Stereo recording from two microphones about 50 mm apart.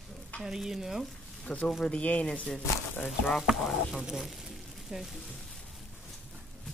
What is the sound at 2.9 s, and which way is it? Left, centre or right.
Speech, left.